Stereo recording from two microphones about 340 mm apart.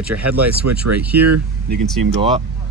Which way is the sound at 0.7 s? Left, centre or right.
Right.